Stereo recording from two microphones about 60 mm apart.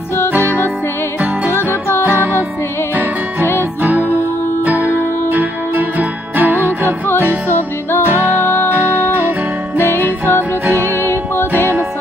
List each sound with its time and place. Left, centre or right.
0.4 s music: left
4.6 s music: right
8.1 s music: right
8.4 s music: left
10.8 s music: left